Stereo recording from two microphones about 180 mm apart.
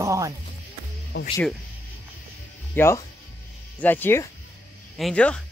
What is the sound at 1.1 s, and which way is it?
Speech, 70° left (ahead or behind).